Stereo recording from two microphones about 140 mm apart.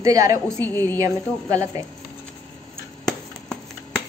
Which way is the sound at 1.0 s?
25° right (ahead or behind).